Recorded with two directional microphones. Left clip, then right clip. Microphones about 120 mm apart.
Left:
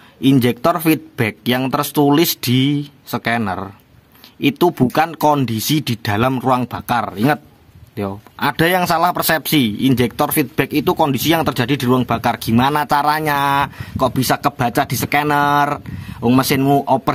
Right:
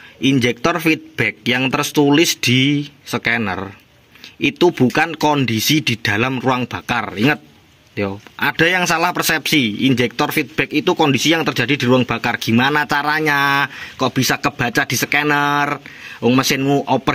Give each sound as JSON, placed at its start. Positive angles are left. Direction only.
{"t": 0.2, "sound": "speech", "side_deg": 40}
{"t": 4.4, "sound": "speech", "side_deg": 45}
{"t": 7.9, "sound": "speech", "side_deg": 30}